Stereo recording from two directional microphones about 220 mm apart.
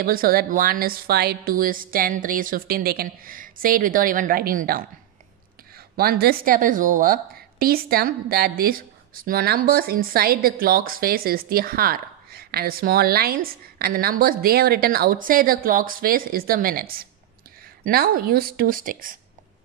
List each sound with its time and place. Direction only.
0.0 s a woman's voice: 40° right (ahead or behind)
5.9 s a woman's voice: 45° right (ahead or behind)